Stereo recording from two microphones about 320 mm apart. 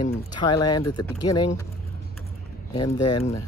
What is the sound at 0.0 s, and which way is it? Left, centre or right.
Speech, centre.